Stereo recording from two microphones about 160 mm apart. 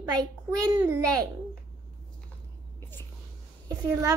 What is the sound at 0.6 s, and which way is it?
Speech, 20° right (ahead or behind).